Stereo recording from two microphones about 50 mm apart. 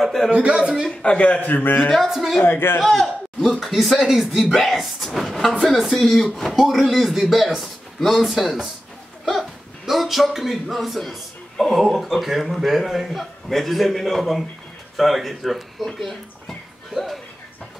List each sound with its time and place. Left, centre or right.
0.0 s speech: centre
0.3 s a man's voice: right
1.0 s speech: left
1.6 s speech: left
2.0 s speech: centre
2.4 s speech: left
2.8 s a man's voice: centre
16.0 s a sound: centre